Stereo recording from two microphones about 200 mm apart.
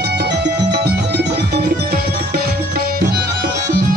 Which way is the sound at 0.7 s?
50° right (ahead or behind).